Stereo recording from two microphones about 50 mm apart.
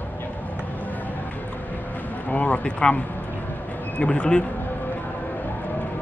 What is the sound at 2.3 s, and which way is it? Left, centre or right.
Speech, left.